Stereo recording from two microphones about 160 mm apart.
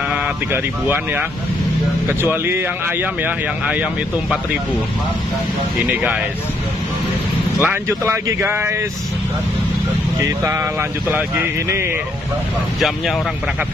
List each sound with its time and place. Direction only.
0.1 s speech: 10° right (ahead or behind)
7.6 s speech: 15° right (ahead or behind)
10.4 s speech: 15° right (ahead or behind)